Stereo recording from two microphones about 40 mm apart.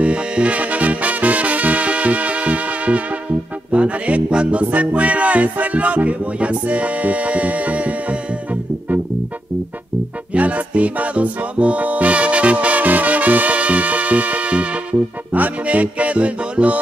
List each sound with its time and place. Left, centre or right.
0.0 s music: right
10.3 s music: right